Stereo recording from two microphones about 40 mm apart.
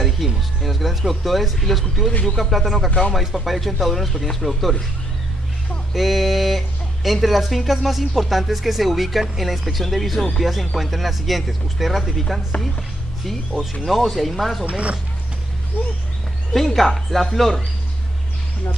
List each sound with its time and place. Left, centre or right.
0.2 s speech: centre
5.9 s speech: centre
14.7 s speech: right
16.5 s speech: centre